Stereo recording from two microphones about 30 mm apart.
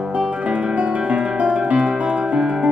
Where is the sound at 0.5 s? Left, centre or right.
Right.